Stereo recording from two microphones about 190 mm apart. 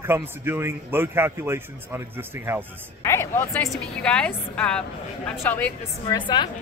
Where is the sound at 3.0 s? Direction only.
15° left (ahead or behind).